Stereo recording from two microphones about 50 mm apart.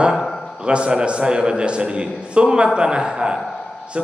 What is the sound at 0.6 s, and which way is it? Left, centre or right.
A man's voice, right.